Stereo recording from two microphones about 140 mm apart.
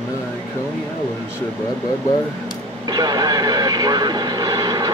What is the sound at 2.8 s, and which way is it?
Radio, 30° right (ahead or behind).